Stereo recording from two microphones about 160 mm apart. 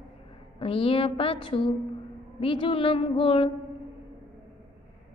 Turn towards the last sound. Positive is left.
turn(degrees=35)  # may be behind; listen again after turning